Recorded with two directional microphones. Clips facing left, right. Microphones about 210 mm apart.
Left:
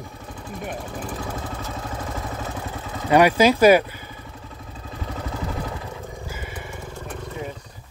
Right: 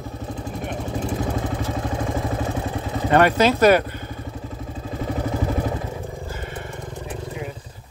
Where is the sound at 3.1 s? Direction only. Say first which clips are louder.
Left 1 dB; 10° left (ahead or behind).